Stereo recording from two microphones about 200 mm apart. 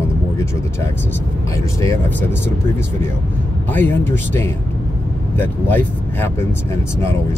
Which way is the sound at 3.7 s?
10° left (ahead or behind).